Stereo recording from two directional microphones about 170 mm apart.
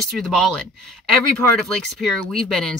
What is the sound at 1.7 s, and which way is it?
Speech, centre (ahead or behind).